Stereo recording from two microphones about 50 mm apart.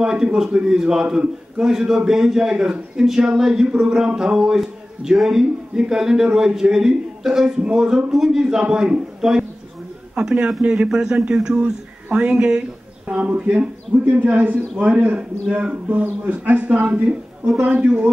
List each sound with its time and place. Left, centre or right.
0.0 s a man's voice: centre
10.9 s a man's voice: centre